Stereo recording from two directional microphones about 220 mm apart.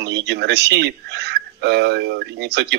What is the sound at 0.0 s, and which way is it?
Speech, 50° right (ahead or behind).